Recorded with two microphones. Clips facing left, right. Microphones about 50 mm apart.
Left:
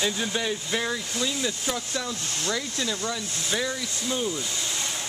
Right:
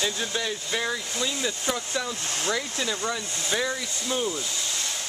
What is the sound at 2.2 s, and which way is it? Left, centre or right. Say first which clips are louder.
Speech: right 1 dB; right.